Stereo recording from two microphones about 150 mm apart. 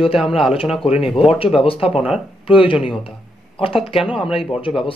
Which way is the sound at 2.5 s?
35° left (ahead or behind).